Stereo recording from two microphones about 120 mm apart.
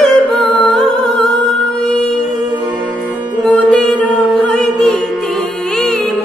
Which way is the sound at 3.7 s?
5° left (ahead or behind).